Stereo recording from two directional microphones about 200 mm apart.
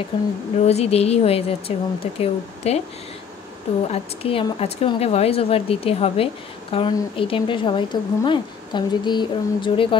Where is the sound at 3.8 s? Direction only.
30° left (ahead or behind).